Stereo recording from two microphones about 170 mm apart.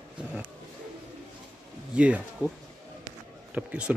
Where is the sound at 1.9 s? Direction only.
5° right (ahead or behind).